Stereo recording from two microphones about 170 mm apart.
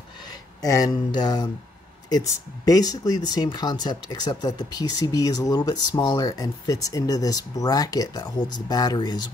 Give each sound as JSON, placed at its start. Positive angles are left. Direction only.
{"t": 0.6, "sound": "speech", "side_deg": 20}